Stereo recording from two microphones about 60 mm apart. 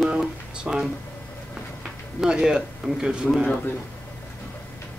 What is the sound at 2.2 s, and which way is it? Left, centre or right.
A man's voice, centre.